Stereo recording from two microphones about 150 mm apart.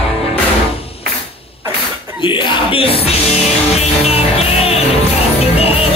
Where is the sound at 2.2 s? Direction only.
35° left (ahead or behind).